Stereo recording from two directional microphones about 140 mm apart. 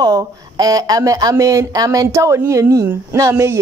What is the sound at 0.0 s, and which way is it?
Speech, 25° right (ahead or behind).